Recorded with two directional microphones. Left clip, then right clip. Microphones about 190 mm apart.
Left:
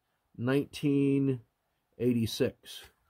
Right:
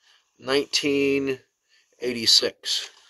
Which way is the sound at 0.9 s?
50° left (ahead or behind).